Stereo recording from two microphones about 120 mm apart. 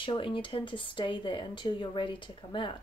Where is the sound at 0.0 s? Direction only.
45° left (ahead or behind).